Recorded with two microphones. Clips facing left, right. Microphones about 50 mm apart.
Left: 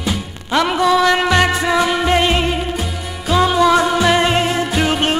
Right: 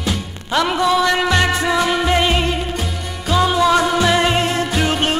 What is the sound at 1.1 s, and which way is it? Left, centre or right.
Music, centre.